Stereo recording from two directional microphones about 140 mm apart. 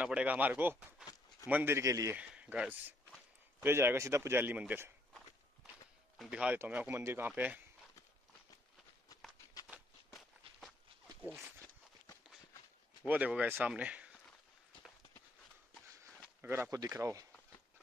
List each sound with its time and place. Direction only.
0.0 s speech: 10° right (ahead or behind)
2.1 s speech: 10° right (ahead or behind)
6.1 s speech: 5° right (ahead or behind)
9.1 s a sound: 25° left (ahead or behind)
9.7 s walk: centre (ahead or behind)
13.0 s speech: 10° right (ahead or behind)
16.3 s speech: 15° right (ahead or behind)